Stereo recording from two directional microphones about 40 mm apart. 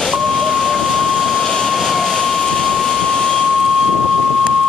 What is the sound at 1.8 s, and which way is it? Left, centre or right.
Vehicle, centre.